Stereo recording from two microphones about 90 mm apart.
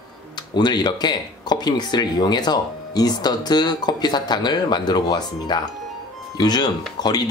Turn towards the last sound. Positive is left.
turn(degrees=50)  # may be behind; listen again after turning